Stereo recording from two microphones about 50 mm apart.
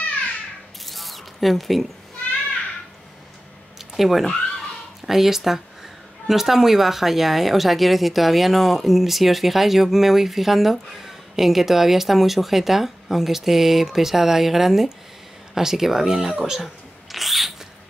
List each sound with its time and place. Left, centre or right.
0.8 s zipper: centre
3.7 s a sound: centre
5.0 s speech: centre